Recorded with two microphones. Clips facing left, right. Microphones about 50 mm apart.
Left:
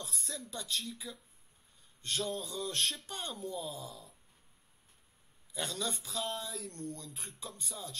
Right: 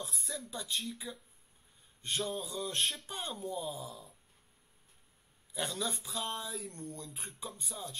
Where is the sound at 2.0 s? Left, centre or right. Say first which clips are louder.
Even; centre.